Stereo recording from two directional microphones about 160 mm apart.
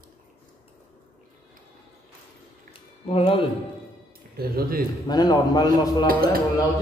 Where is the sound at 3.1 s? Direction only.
35° left (ahead or behind).